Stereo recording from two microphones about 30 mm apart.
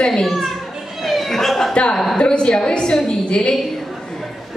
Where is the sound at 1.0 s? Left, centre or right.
Centre.